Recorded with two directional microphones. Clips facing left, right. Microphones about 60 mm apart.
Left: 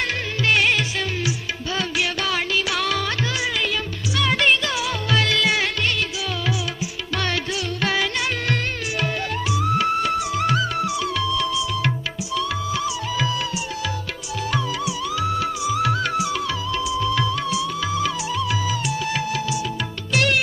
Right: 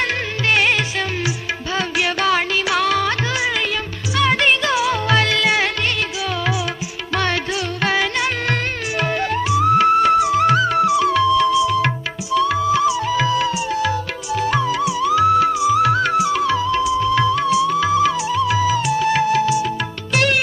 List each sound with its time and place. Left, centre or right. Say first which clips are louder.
0.0 s music: right 3 dB; right